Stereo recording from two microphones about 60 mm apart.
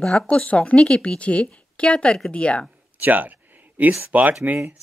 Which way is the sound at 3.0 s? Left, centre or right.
Right.